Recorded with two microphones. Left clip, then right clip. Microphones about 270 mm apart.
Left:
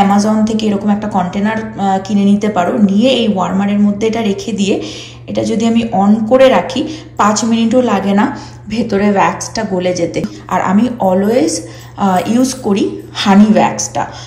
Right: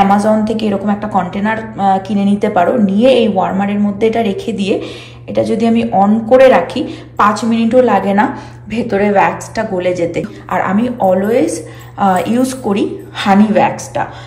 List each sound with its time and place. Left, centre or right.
0.1 s speech: centre